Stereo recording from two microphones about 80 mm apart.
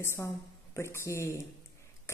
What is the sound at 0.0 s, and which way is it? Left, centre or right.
A woman's voice, left.